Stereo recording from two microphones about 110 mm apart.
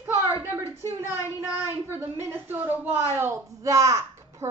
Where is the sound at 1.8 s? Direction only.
20° right (ahead or behind).